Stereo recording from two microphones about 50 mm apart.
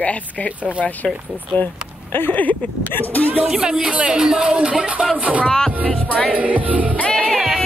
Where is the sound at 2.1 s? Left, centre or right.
Left.